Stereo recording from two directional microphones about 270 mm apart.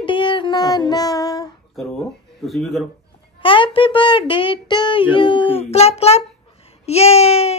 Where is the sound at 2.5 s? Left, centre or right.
Centre.